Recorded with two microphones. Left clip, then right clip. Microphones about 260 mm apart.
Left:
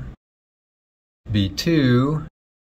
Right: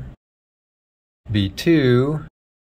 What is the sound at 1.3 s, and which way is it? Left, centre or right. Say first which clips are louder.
Speech: right 3 dB; centre.